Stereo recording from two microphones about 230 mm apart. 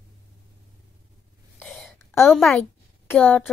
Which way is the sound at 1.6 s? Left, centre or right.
Centre.